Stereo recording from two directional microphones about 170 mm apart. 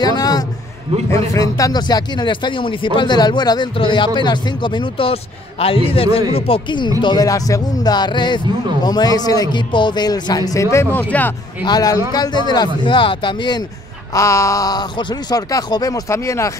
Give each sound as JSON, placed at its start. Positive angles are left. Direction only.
{"t": 0.0, "sound": "a sound", "side_deg": 25}
{"t": 1.3, "sound": "speech", "side_deg": 20}
{"t": 11.6, "sound": "speech", "side_deg": 25}